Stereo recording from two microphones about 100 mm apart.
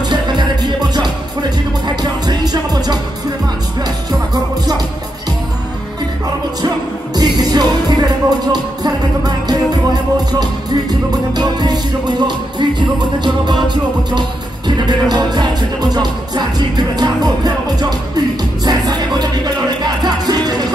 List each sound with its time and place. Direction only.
0.1 s music: 50° right (ahead or behind)
7.2 s music: 40° right (ahead or behind)
14.9 s music: 45° right (ahead or behind)